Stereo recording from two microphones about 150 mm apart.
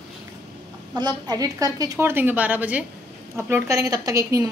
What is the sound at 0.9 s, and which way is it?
A woman's voice, 25° right (ahead or behind).